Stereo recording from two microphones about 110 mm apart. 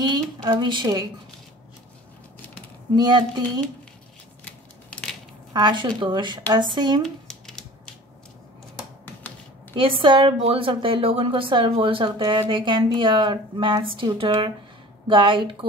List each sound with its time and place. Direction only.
0.0 s speech: 40° right (ahead or behind)
3.0 s speech: 40° right (ahead or behind)
5.5 s speech: 40° right (ahead or behind)
7.0 s a sound: 5° left (ahead or behind)
9.0 s typewriter: 15° left (ahead or behind)
9.8 s speech: 55° right (ahead or behind)